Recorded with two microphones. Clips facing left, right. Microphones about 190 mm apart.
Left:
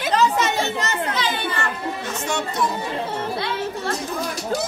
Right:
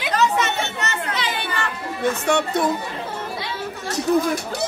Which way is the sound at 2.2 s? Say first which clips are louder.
Right 2 dB; 60° right (ahead or behind).